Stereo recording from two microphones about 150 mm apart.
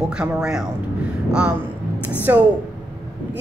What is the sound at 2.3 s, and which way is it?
Speech, 15° right (ahead or behind).